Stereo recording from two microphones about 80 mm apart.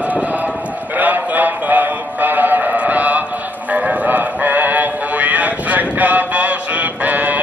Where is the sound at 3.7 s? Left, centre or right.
Centre.